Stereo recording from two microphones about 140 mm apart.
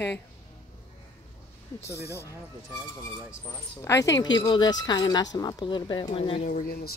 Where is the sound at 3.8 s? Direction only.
20° left (ahead or behind); by 6.4 s 40° left (ahead or behind).